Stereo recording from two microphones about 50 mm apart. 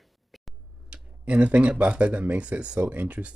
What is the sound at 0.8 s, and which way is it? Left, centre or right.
Speech, right.